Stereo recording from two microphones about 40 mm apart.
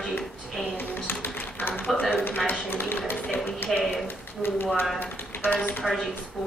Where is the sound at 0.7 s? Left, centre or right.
Left.